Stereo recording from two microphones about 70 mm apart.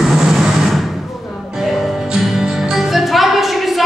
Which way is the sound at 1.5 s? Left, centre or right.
Centre.